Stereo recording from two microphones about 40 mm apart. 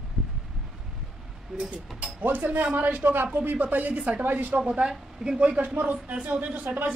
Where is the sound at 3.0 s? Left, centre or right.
Right.